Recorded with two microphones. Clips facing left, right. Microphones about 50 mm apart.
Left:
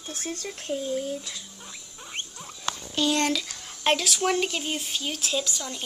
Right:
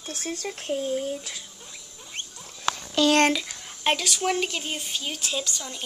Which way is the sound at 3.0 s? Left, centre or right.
Right.